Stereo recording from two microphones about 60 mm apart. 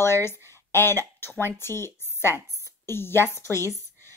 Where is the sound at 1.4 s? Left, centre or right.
Left.